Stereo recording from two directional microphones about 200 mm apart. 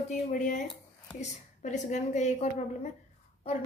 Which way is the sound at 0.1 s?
40° left (ahead or behind).